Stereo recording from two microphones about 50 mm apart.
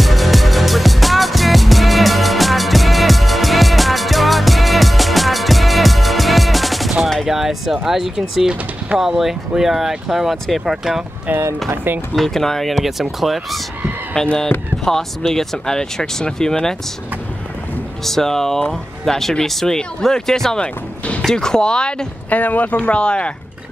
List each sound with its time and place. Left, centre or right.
0.0 s music: centre
7.2 s speech: centre
10.3 s speech: centre
10.6 s speech: centre
11.7 s speech: right
12.2 s speech: centre
14.2 s speech: centre
18.0 s speech: centre
20.6 s speech: left
21.3 s speech: centre
22.3 s speech: left
22.8 s speech: centre